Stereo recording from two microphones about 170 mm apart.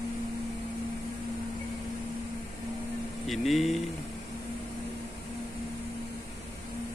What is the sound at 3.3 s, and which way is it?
Speech, centre (ahead or behind).